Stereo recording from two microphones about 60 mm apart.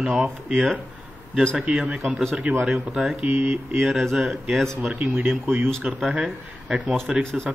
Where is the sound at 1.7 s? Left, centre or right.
Centre.